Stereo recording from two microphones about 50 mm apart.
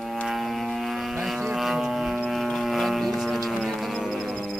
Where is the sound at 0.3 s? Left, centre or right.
Centre.